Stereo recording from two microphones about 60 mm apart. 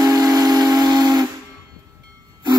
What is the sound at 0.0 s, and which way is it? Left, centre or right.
Steam whistle, right.